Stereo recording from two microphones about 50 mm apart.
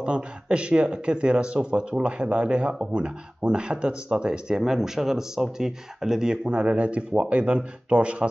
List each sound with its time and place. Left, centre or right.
0.0 s speech: right